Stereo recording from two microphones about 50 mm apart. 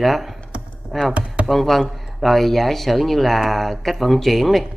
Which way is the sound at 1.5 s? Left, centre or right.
Centre.